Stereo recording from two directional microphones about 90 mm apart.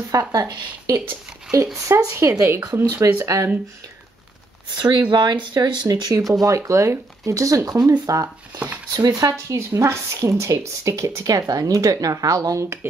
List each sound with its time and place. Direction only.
0.1 s speech: 40° right (ahead or behind)
5.1 s speech: 55° right (ahead or behind)
8.9 s speech: 45° right (ahead or behind)